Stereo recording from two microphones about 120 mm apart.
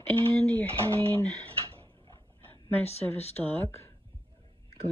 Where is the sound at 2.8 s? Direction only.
60° left (ahead or behind).